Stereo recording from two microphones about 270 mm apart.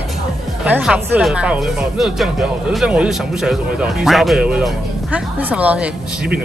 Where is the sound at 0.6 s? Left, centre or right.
Centre.